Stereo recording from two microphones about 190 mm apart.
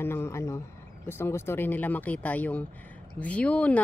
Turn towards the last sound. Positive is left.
turn(degrees=5)  # may be behind; listen again after turning